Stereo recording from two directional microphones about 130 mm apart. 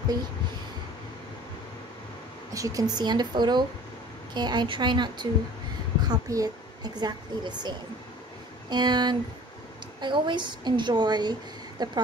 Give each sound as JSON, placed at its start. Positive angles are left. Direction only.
{"t": 2.5, "sound": "a woman's voice", "side_deg": -25}